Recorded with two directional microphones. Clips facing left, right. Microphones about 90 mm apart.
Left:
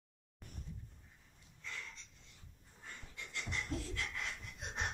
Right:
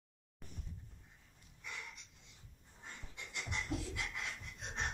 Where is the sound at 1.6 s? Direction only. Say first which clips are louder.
Even; 15° right (ahead or behind).